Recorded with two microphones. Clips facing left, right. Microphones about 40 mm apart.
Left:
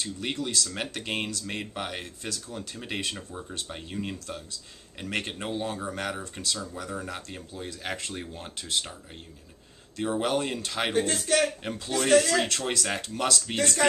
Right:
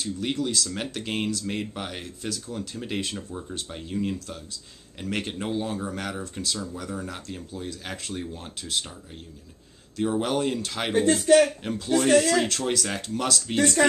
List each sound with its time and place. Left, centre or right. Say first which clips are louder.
0.0 s speech: right 4 dB; centre
3.7 s speech: right 7 dB; centre
9.9 s speech: right 2 dB; centre
13.8 s speech: right 1 dB; centre